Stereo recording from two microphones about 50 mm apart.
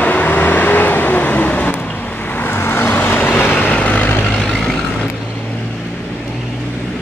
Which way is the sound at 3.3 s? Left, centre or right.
Left.